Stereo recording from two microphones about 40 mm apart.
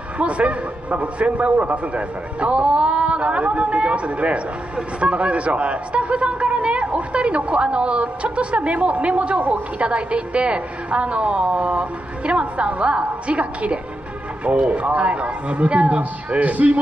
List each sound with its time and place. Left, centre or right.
0.2 s a man's voice: right